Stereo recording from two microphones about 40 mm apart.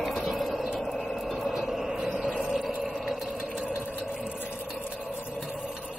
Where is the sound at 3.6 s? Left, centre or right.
Right.